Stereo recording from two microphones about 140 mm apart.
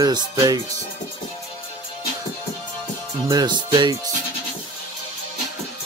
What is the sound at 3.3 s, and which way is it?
Music, 30° right (ahead or behind).